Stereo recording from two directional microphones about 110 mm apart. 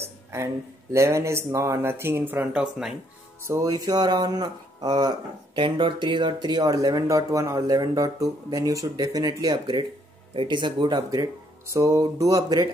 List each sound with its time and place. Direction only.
0.9 s speech: 25° right (ahead or behind); by 2.9 s 10° right (ahead or behind)
3.4 s speech: 30° right (ahead or behind)
5.6 s speech: 50° right (ahead or behind)